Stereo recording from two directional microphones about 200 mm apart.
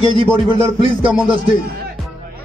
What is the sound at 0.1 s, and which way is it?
Speech, 25° right (ahead or behind).